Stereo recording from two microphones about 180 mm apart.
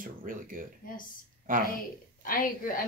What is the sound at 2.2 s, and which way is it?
Speech, 50° left (ahead or behind).